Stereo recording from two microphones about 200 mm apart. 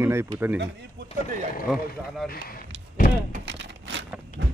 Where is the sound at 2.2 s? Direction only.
45° left (ahead or behind).